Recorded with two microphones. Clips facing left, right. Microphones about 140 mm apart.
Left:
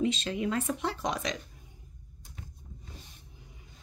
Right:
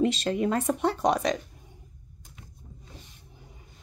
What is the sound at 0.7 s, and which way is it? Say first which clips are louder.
Speech: right 7 dB; 55° right (ahead or behind).